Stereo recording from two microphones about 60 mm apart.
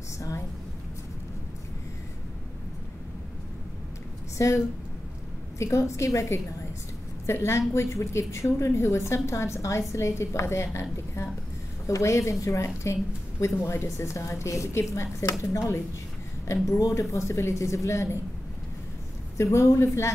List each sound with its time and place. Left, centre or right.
5.6 s a woman's voice: left
19.3 s a woman's voice: left